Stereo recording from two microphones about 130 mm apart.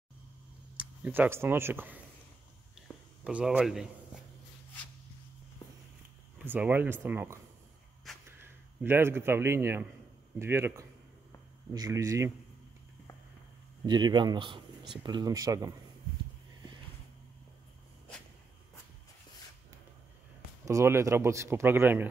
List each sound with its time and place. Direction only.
0.7 s speech: 10° right (ahead or behind)
3.3 s a man's voice: 10° right (ahead or behind)
6.3 s speech: 10° right (ahead or behind)
8.1 s a sound: centre (ahead or behind)
8.4 s a man's voice: 15° right (ahead or behind)
13.8 s speech: 35° right (ahead or behind)
20.6 s speech: 20° right (ahead or behind)